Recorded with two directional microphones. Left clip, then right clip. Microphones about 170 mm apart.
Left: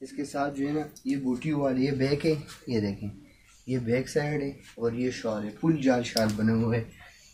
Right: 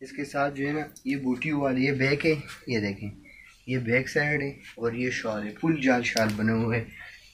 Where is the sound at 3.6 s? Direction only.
40° left (ahead or behind).